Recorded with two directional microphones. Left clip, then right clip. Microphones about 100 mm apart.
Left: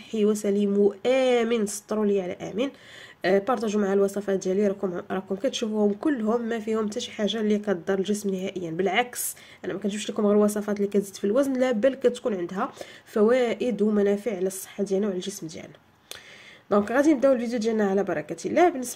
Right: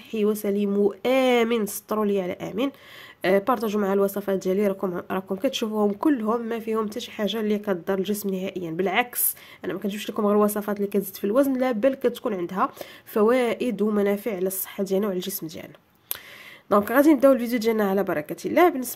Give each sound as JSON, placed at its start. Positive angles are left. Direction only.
{"t": 0.1, "sound": "speech", "side_deg": -25}
{"t": 6.2, "sound": "speech", "side_deg": -25}
{"t": 14.8, "sound": "speech", "side_deg": -55}
{"t": 16.6, "sound": "speech", "side_deg": -45}